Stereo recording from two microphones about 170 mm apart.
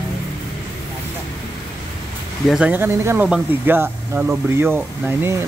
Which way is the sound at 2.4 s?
5° right (ahead or behind).